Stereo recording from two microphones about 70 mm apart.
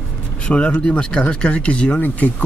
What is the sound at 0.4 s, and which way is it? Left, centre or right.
Speech, centre.